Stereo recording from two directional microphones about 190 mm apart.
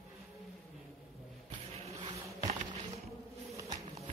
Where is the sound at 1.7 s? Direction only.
35° right (ahead or behind).